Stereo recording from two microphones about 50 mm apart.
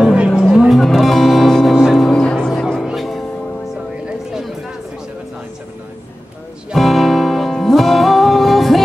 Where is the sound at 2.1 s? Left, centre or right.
Centre.